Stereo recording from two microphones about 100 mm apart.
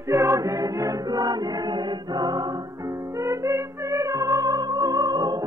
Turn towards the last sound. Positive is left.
turn(degrees=-40)  # may be behind; listen again after turning